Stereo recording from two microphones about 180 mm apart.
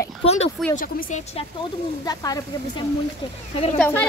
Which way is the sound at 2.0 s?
20° left (ahead or behind).